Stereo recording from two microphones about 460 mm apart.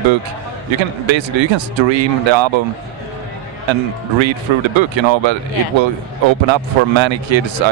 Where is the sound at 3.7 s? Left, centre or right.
Right.